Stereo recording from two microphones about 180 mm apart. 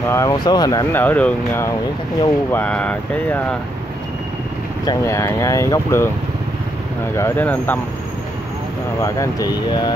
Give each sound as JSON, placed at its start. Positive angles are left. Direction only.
{"t": 0.1, "sound": "speech", "side_deg": 20}
{"t": 4.8, "sound": "speech", "side_deg": 15}
{"t": 7.2, "sound": "speech", "side_deg": 15}
{"t": 9.0, "sound": "speech", "side_deg": 20}